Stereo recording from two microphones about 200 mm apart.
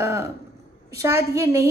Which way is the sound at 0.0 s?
15° right (ahead or behind).